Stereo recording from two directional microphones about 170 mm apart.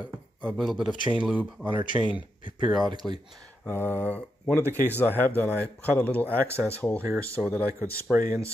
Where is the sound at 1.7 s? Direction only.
30° right (ahead or behind).